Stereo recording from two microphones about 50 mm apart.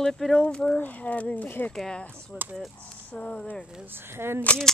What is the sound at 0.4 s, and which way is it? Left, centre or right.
Speech, left.